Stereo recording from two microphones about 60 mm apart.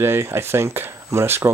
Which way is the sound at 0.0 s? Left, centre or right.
Right.